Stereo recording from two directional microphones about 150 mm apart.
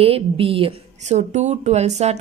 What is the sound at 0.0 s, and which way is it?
A woman's voice, 40° right (ahead or behind).